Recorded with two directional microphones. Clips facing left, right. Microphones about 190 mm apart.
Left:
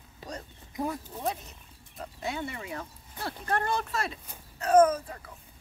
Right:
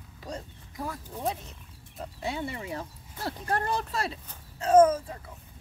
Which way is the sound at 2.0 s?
30° right (ahead or behind).